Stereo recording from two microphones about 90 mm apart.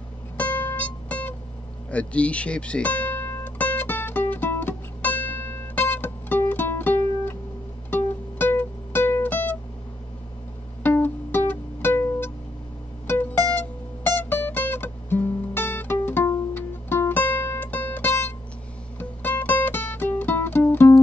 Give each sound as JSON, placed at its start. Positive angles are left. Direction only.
{"t": 0.4, "sound": "music", "side_deg": 20}
{"t": 10.8, "sound": "music", "side_deg": 20}